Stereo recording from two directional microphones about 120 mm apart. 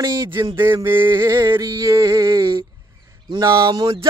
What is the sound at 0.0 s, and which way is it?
Speech, 35° right (ahead or behind).